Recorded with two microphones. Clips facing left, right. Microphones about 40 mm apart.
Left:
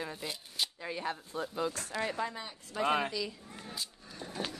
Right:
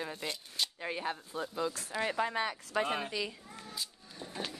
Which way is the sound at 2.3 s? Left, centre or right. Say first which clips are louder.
Right 9 dB; right.